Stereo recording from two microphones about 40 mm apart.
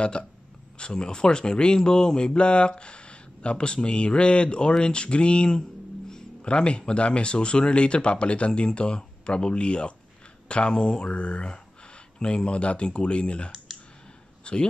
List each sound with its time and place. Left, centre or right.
0.7 s speech: left
13.7 s clicking: centre
14.4 s speech: left